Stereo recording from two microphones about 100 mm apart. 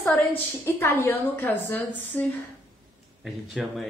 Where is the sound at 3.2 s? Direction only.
Centre (ahead or behind).